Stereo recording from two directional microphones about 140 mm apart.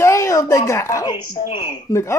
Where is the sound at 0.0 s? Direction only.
20° left (ahead or behind).